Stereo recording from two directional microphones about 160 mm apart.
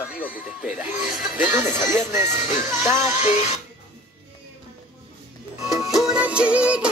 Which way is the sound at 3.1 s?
50° left (ahead or behind).